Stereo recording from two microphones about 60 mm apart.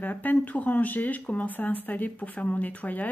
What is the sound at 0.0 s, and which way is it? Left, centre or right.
Speech, left.